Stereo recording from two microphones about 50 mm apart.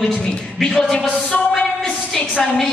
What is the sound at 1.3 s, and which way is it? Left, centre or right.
Speech, left.